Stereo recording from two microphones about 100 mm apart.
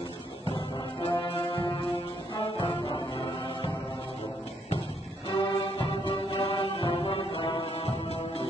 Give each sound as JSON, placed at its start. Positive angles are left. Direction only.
{"t": 1.0, "sound": "music", "side_deg": 60}
{"t": 5.3, "sound": "music", "side_deg": 60}